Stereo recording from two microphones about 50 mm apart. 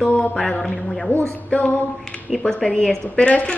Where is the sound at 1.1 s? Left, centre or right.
Left.